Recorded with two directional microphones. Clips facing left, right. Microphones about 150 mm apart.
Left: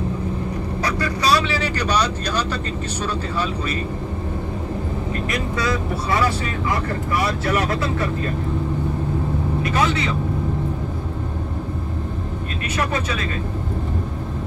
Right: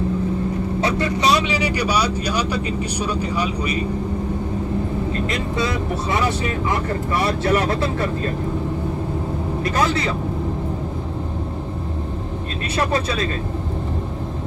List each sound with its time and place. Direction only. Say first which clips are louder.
0.7 s speech: right 2 dB; 25° right (ahead or behind)
5.3 s speech: even; 25° right (ahead or behind)
9.6 s speech: right 1 dB; 40° right (ahead or behind)
12.7 s speech: right 3 dB; 35° right (ahead or behind)